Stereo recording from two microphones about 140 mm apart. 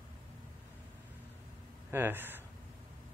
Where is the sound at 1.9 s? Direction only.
15° right (ahead or behind).